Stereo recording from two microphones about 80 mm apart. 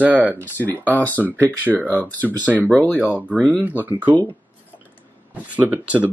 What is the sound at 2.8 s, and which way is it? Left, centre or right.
Speech, centre.